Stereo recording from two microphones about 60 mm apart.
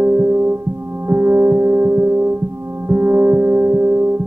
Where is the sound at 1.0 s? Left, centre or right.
Right.